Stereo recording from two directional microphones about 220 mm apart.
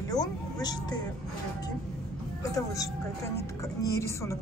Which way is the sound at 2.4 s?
15° left (ahead or behind).